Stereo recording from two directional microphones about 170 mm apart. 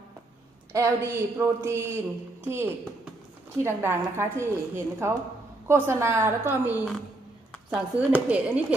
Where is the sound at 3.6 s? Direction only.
15° right (ahead or behind).